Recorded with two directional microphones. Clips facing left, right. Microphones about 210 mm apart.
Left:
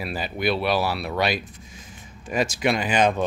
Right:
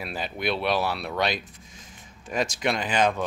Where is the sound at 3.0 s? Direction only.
25° left (ahead or behind).